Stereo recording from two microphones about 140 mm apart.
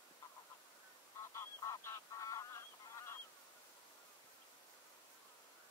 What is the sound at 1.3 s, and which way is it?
Goose, 20° left (ahead or behind).